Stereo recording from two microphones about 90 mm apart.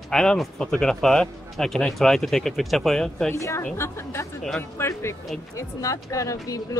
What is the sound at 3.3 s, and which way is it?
Speech, 30° left (ahead or behind).